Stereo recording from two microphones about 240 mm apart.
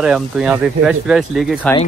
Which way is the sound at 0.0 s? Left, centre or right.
Centre.